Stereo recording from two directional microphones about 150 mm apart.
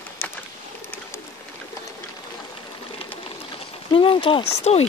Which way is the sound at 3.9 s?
35° left (ahead or behind).